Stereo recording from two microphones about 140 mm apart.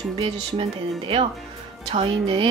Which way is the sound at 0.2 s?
40° right (ahead or behind).